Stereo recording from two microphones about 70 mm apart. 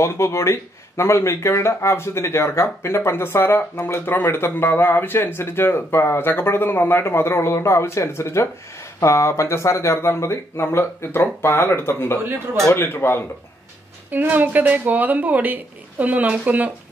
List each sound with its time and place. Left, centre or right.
0.0 s speech: left
14.1 s speech: right